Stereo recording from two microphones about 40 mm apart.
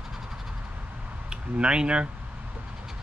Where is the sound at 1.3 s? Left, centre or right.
Right.